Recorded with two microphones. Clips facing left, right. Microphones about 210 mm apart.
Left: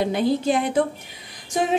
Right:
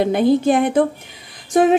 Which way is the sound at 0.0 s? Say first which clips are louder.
Right 6 dB; 55° right (ahead or behind).